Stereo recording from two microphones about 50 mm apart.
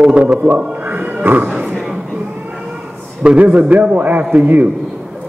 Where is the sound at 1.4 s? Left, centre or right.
Right.